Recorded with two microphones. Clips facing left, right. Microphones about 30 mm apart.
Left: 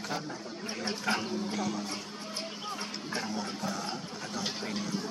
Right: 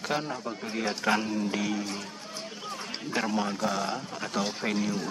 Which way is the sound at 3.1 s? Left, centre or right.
Right.